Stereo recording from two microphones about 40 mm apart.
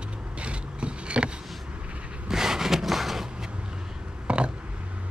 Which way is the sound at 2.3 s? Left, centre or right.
Centre.